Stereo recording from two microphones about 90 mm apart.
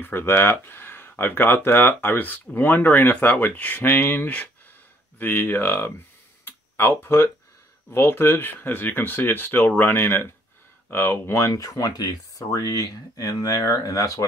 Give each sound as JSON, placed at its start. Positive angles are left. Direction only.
{"t": 0.0, "sound": "speech", "side_deg": 25}
{"t": 6.4, "sound": "a sound", "side_deg": 25}
{"t": 7.9, "sound": "speech", "side_deg": 25}